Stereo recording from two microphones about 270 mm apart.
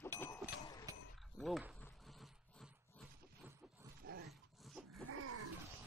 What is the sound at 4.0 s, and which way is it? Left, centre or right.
Dog, right.